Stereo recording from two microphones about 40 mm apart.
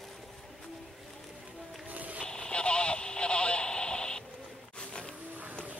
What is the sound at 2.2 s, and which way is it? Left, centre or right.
Radio, left.